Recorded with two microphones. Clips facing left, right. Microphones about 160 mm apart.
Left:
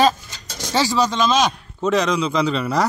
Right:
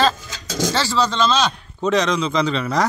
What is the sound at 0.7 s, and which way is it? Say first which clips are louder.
A man's voice: left 4 dB; 15° left (ahead or behind).